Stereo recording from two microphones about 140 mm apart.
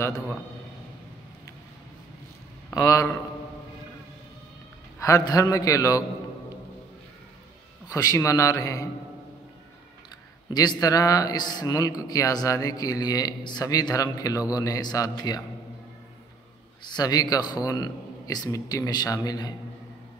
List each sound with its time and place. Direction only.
0.0 s speech: 20° left (ahead or behind)
2.7 s speech: 25° left (ahead or behind)
4.9 s speech: 20° left (ahead or behind)
7.9 s speech: 25° left (ahead or behind)
10.5 s speech: 30° left (ahead or behind)
16.8 s speech: 30° left (ahead or behind)